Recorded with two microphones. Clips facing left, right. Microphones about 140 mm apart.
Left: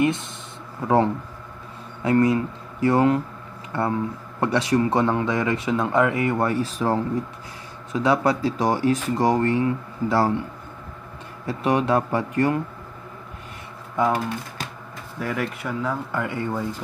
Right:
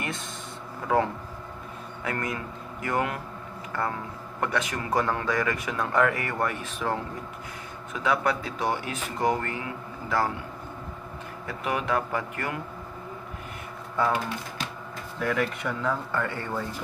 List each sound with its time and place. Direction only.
0.8 s speech: 25° left (ahead or behind)
2.0 s speech: 30° left (ahead or behind)
11.4 s speech: 35° left (ahead or behind)
14.0 s speech: 20° left (ahead or behind)
15.1 s speech: 5° left (ahead or behind)